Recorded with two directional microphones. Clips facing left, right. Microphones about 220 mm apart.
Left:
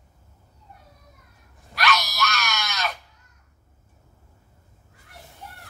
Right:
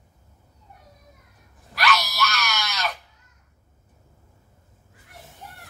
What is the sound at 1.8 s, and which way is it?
Screaming, centre (ahead or behind).